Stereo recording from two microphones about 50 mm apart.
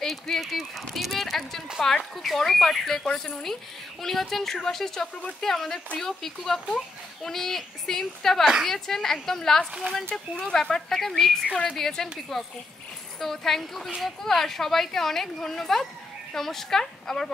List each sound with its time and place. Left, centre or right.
0.0 s a woman's voice: centre
11.4 s speech: left
11.7 s a woman's voice: centre